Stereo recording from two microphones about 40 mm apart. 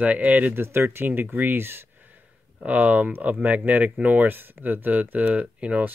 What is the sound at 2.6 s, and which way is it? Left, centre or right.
Speech, right.